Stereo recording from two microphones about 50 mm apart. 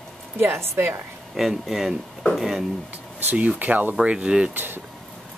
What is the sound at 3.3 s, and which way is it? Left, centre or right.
Speech, right.